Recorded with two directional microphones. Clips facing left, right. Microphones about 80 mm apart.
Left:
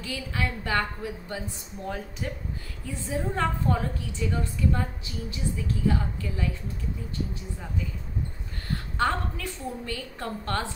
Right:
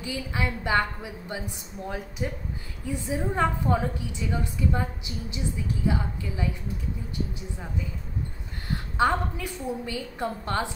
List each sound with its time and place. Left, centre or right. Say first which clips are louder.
0.0 s a woman's voice: right 1 dB; centre
8.6 s a woman's voice: right 3 dB; centre